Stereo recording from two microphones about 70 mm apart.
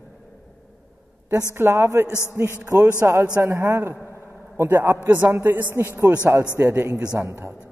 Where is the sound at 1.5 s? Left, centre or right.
Right.